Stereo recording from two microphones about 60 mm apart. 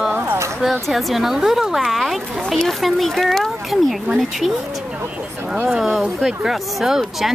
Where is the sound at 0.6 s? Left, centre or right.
Centre.